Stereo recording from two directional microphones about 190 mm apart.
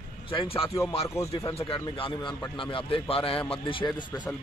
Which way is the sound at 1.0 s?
15° left (ahead or behind).